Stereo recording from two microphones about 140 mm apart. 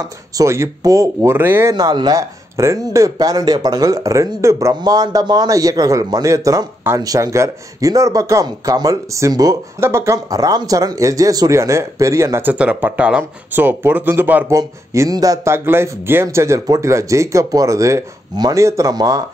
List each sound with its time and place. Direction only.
0.4 s speech: 20° right (ahead or behind)
14.6 s speech: 25° right (ahead or behind)